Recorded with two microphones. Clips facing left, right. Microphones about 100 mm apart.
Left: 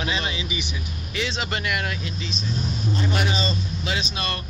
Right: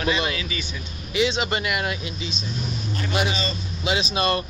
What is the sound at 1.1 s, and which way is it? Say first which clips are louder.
Speech: right 6 dB; 5° right (ahead or behind).